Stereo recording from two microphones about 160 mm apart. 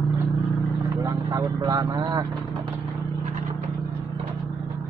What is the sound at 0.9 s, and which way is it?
Vehicle, 20° right (ahead or behind).